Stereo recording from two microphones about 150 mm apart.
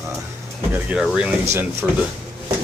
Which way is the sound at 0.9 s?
5° right (ahead or behind).